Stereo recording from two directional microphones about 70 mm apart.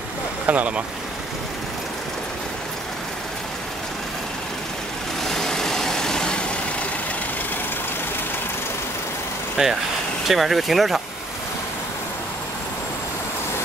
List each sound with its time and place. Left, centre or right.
0.5 s speech: right
5.2 s vehicle: centre
9.6 s speech: centre